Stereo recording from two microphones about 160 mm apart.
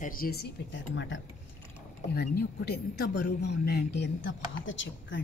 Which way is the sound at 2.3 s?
85° left.